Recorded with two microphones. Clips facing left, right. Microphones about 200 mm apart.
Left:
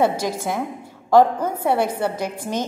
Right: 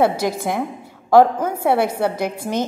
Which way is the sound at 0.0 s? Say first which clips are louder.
Right 2 dB; 10° right (ahead or behind).